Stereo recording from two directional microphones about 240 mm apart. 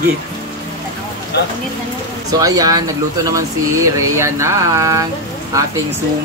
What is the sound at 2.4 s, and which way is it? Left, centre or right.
Speech, centre.